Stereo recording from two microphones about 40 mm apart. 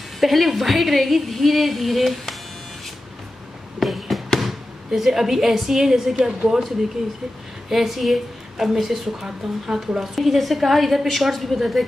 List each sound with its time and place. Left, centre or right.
0.2 s a woman's voice: centre
3.8 s a sound: centre
4.4 s speech: centre
6.4 s speech: centre
7.7 s a woman's voice: centre